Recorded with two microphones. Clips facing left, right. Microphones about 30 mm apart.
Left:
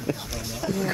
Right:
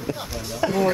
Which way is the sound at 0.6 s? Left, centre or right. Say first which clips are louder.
Right 7 dB; right.